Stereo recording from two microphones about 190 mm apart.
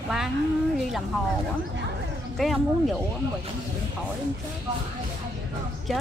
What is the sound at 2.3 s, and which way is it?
Speech, centre (ahead or behind).